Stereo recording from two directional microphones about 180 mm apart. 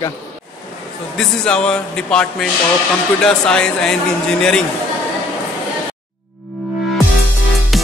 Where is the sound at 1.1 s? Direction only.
5° left (ahead or behind).